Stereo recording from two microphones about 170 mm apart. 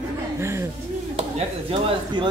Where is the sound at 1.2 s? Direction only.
35° right (ahead or behind).